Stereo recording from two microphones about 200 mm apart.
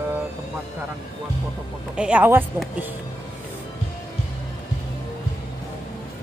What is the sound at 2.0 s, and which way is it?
Speech, 5° right (ahead or behind).